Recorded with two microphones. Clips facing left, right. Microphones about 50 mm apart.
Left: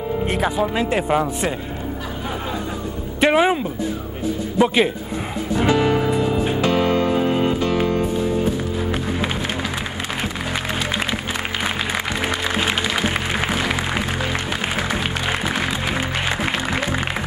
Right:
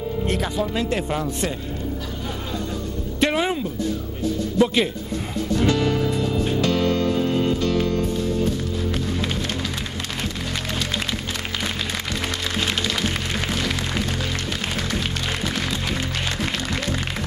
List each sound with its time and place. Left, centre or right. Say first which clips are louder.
0.2 s speech: left 3 dB; centre
3.2 s speech: left 5 dB; centre
5.5 s music: left 3 dB; centre
12.5 s music: left 3 dB; centre